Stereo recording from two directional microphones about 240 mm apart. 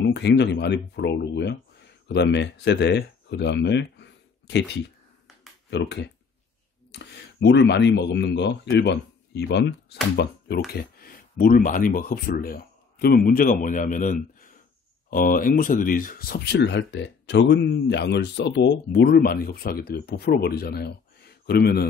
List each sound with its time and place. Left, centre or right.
0.0 s speech: left
5.7 s speech: left